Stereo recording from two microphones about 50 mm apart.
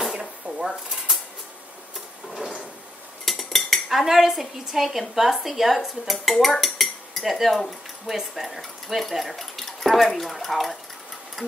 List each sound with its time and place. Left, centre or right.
0.0 s a sound: centre
3.3 s cutlery: centre
3.9 s a woman's voice: centre